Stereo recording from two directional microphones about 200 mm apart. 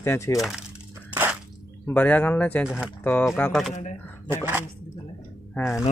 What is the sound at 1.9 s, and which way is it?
Speech, 10° left (ahead or behind).